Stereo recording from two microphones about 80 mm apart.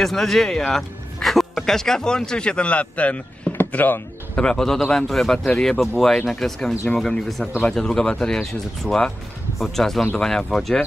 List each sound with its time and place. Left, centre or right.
0.0 s speech: centre
3.5 s a sound: left
4.4 s speech: centre